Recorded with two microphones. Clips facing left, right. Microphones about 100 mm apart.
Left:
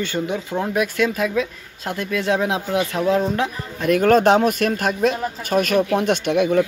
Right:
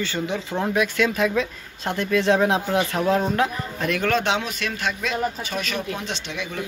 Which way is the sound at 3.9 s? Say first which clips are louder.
Left 9 dB; 45° left (ahead or behind).